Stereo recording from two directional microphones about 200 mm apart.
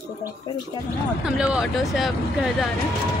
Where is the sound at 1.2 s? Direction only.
5° right (ahead or behind).